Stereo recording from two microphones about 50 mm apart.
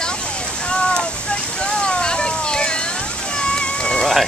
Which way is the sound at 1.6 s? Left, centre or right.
Centre.